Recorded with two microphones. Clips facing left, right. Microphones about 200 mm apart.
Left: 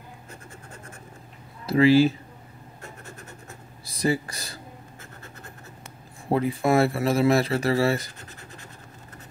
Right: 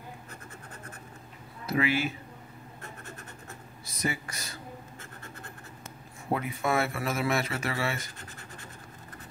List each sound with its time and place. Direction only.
1.7 s speech: 30° left (ahead or behind)
3.8 s speech: 35° left (ahead or behind)
6.2 s speech: 30° left (ahead or behind)